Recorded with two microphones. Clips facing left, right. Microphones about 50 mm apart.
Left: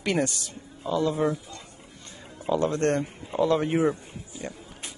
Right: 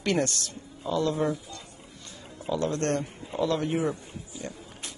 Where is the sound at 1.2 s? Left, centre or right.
Left.